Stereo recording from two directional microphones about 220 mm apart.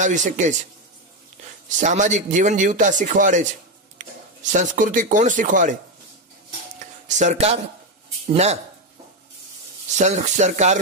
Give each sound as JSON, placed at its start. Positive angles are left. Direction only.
{"t": 0.0, "sound": "a man's voice", "side_deg": -35}
{"t": 4.0, "sound": "a sound", "side_deg": -35}
{"t": 4.4, "sound": "a man's voice", "side_deg": -35}
{"t": 6.8, "sound": "speech", "side_deg": -35}
{"t": 9.9, "sound": "a man's voice", "side_deg": -30}